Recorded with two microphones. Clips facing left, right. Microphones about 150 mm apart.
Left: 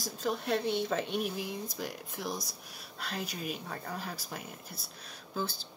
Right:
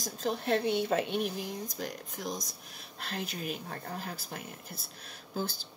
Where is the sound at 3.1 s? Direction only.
Centre (ahead or behind).